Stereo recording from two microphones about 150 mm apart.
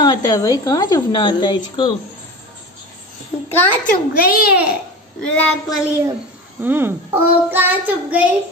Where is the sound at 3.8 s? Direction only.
70° left (ahead or behind).